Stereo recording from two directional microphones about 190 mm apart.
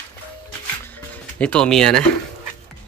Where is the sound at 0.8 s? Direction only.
10° left (ahead or behind).